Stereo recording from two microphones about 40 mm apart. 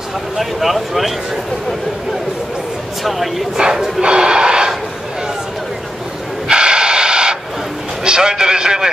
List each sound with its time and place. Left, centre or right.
0.4 s speech: centre
3.0 s a man's voice: centre
4.0 s a sound: right
6.5 s vehicle: right
8.0 s a man's voice: centre